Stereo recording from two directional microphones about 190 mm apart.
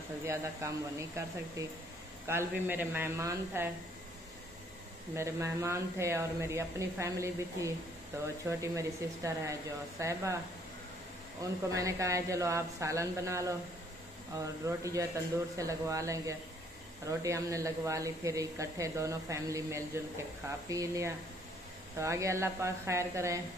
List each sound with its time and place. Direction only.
0.2 s speech: 15° right (ahead or behind)
5.1 s speech: 15° right (ahead or behind)
11.7 s speech: 15° right (ahead or behind)